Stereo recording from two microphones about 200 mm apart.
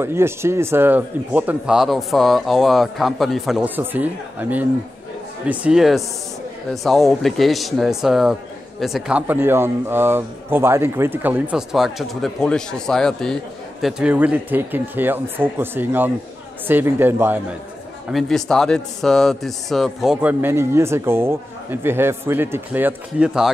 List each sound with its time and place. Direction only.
0.0 s speech: 10° right (ahead or behind)
18.1 s speech: centre (ahead or behind)